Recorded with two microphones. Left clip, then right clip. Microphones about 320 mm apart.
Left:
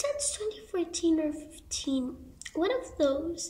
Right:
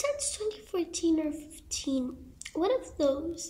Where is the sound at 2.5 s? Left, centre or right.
Centre.